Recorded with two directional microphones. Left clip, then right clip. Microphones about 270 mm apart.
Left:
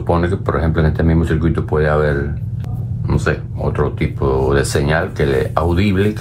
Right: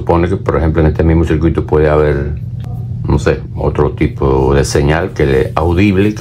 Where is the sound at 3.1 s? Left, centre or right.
Right.